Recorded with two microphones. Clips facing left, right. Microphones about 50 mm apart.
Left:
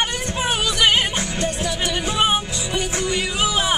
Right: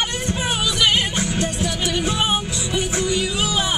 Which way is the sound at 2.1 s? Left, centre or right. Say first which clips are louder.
Left 2 dB; left.